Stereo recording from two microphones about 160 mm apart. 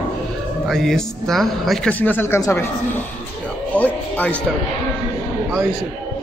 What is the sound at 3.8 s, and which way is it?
Music, 10° left (ahead or behind).